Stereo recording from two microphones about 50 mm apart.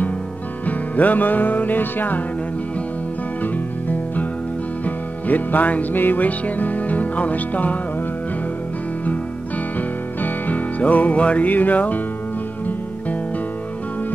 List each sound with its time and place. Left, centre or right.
0.7 s music: left
4.8 s music: left
9.8 s music: left